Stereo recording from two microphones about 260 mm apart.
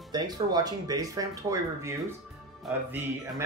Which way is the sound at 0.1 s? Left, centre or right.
Centre.